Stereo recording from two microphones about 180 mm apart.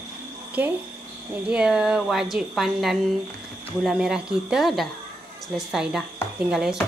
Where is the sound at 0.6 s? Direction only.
10° right (ahead or behind).